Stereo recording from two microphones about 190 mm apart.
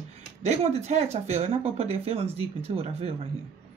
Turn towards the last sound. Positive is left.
turn(degrees=-30)  # may be behind; listen again after turning